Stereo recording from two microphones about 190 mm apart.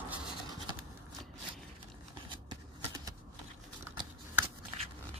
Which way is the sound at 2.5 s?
20° right (ahead or behind).